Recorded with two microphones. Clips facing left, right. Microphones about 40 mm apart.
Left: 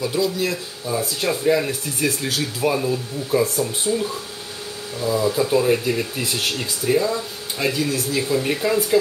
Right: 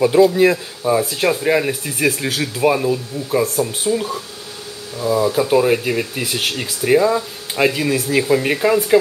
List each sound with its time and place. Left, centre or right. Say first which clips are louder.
0.0 s speech: right 10 dB; right
1.6 s speech: right 4 dB; right